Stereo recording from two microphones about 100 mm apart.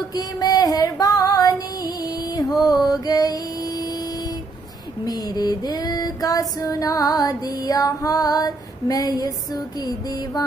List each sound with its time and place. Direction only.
0.1 s female singing: 40° left (ahead or behind)
2.6 s mantra: 40° left (ahead or behind)
5.0 s female singing: 40° left (ahead or behind)